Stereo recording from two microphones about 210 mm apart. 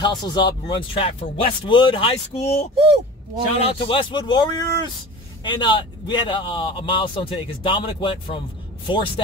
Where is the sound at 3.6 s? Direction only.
25° left (ahead or behind).